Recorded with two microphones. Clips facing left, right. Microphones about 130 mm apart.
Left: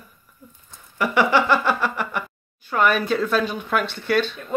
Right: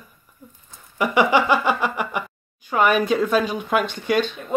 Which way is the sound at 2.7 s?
10° right (ahead or behind).